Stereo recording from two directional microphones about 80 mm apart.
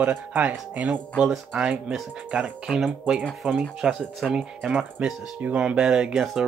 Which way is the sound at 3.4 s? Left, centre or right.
Right.